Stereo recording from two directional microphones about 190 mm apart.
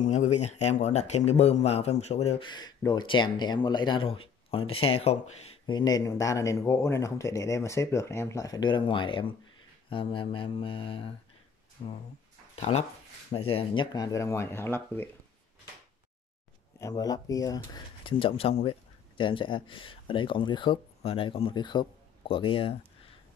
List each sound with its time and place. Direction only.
0.0 s speech: 40° left (ahead or behind)
5.8 s speech: 20° left (ahead or behind)
16.8 s speech: 20° left (ahead or behind)